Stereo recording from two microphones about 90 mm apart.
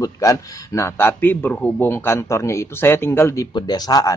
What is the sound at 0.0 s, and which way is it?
Speech, 40° left (ahead or behind).